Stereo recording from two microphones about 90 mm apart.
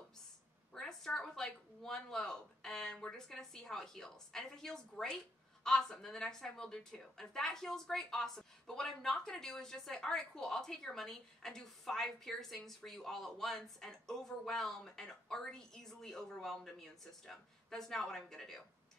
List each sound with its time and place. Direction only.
0.7 s a woman's voice: 5° left (ahead or behind)